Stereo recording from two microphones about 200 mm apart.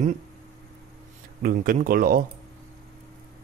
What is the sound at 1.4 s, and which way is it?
Speech, 45° right (ahead or behind).